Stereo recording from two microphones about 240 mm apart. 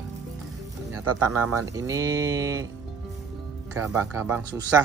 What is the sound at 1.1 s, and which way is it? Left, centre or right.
Speech, right.